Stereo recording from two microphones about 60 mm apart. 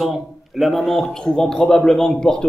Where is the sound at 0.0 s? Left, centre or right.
Centre.